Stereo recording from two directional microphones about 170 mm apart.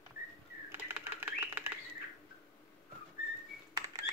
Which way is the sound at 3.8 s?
20° right (ahead or behind).